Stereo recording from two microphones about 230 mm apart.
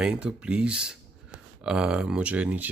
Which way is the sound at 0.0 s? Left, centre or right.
Centre.